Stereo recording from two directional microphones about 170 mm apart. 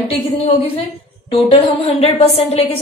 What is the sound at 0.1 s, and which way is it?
A woman's voice, 40° left (ahead or behind).